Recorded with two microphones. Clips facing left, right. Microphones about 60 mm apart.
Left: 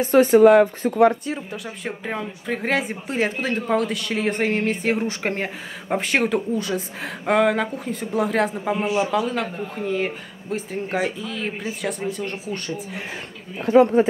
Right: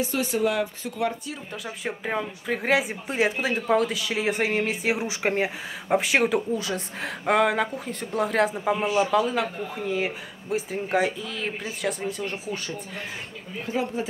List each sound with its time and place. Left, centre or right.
0.0 s speech: left
1.5 s speech: centre
13.7 s a woman's voice: left